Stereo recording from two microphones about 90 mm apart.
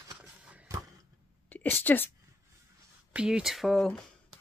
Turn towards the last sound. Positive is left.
turn(degrees=5)  # may be behind; listen again after turning